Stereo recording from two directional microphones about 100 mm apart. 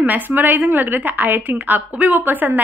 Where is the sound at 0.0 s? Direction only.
15° right (ahead or behind).